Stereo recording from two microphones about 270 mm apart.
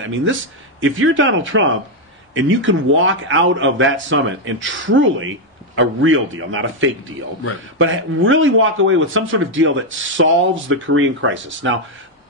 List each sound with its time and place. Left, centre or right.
0.0 s a man's voice: right